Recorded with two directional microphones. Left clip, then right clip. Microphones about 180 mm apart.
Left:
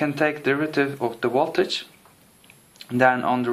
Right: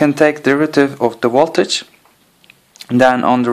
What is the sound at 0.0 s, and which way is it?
Speech, 45° right (ahead or behind).